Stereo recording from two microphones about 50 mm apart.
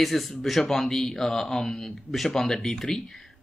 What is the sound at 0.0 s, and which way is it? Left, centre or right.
Speech, centre.